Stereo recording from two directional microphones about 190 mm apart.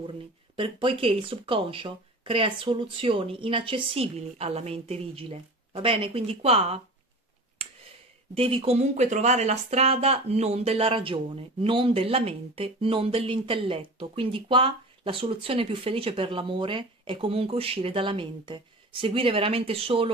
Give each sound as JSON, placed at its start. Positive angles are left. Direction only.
{"t": 0.6, "sound": "a woman's voice", "side_deg": -30}
{"t": 7.6, "sound": "a sound", "side_deg": -30}
{"t": 8.4, "sound": "speech", "side_deg": -30}